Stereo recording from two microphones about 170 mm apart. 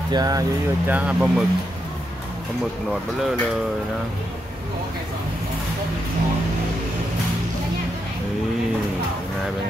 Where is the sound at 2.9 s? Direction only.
Centre (ahead or behind).